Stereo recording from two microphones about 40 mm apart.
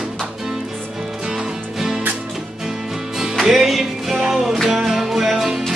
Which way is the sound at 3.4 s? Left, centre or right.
Centre.